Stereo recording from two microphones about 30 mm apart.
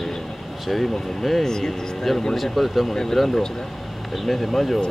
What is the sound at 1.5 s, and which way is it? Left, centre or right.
Speech, left.